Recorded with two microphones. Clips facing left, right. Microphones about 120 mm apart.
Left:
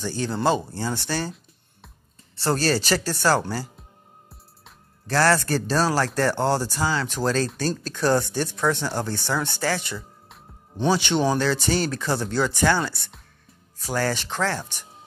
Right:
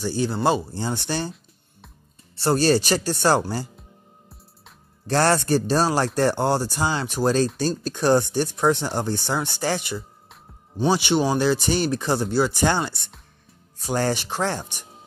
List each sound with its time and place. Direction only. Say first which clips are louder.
0.0 s speech: right 2 dB; 15° right (ahead or behind)
2.4 s speech: right 4 dB; 15° right (ahead or behind)
5.0 s speech: right 1 dB; 20° right (ahead or behind)